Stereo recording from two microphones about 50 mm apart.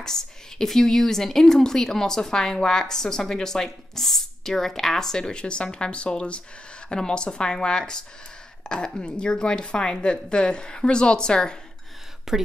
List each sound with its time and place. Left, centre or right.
0.0 s a woman's voice: centre
12.3 s speech: centre